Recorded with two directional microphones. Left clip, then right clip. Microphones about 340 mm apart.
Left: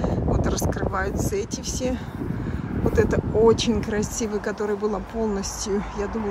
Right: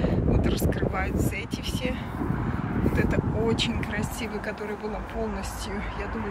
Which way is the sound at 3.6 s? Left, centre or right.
Centre.